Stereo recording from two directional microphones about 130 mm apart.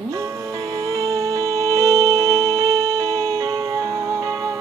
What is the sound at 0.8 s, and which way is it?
Music, 25° right (ahead or behind).